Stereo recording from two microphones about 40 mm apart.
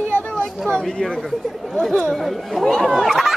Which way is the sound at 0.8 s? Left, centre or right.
Centre.